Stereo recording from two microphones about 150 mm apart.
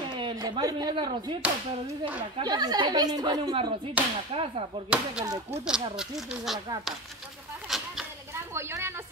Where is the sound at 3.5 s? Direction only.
35° right (ahead or behind).